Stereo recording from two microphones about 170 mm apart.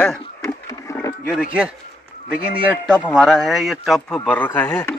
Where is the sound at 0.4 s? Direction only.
20° left (ahead or behind).